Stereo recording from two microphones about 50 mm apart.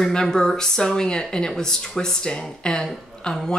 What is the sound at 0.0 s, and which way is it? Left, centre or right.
Speech, centre.